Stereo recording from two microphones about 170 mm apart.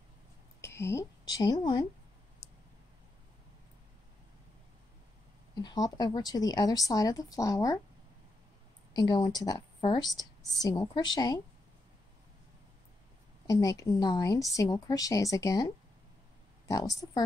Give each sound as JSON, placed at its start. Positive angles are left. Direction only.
{"t": 0.6, "sound": "speech", "side_deg": 15}
{"t": 5.6, "sound": "a woman's voice", "side_deg": 20}
{"t": 8.9, "sound": "a woman's voice", "side_deg": 25}
{"t": 13.5, "sound": "a woman's voice", "side_deg": 20}